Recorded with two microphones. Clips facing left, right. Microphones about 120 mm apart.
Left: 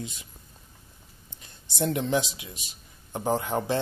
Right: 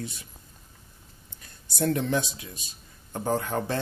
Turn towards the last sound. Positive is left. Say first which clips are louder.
# left 1 dB
turn(degrees=20)  # may be behind; listen again after turning